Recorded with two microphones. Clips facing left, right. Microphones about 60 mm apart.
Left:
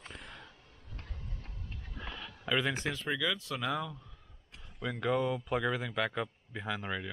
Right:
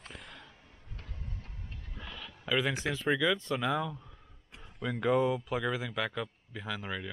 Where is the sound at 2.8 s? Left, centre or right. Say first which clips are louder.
Right 4 dB; centre.